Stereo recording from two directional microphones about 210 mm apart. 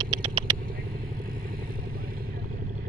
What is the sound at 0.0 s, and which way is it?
Vehicle, 20° right (ahead or behind).